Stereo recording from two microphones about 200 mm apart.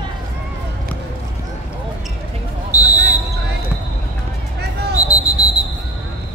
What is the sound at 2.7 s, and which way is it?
Basketball bounce, 15° left (ahead or behind).